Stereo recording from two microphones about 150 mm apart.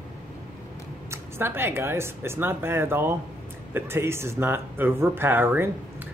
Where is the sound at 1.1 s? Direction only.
15° right (ahead or behind).